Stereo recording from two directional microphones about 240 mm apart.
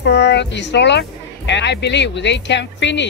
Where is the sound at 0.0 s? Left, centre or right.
Left.